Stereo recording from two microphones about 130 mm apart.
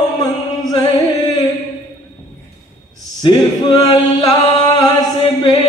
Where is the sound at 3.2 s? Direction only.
35° left (ahead or behind).